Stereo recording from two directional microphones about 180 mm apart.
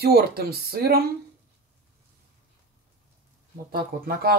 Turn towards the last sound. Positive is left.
turn(degrees=-55)  # may be behind; listen again after turning